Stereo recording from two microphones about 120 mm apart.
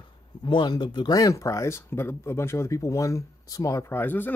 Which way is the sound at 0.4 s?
40° left (ahead or behind).